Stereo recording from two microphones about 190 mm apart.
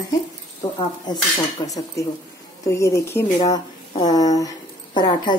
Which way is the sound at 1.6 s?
20° left (ahead or behind).